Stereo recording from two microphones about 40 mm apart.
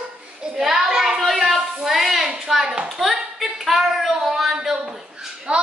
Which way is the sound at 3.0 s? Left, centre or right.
Centre.